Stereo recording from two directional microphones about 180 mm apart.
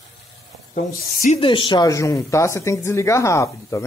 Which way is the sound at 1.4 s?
30° left (ahead or behind).